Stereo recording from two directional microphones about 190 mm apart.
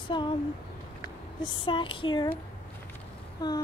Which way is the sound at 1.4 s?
25° left (ahead or behind).